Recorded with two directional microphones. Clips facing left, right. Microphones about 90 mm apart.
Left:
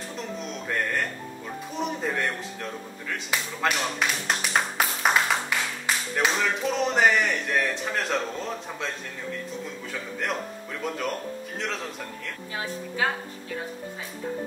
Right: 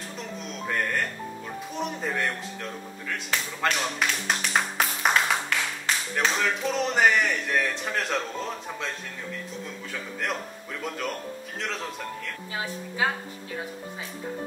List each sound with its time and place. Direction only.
0.5 s speech: centre (ahead or behind)
10.8 s speech: centre (ahead or behind)